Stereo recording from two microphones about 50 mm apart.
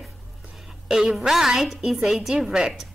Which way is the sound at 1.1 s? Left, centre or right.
Centre.